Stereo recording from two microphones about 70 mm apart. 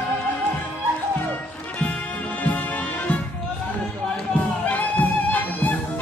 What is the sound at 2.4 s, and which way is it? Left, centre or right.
Music, left.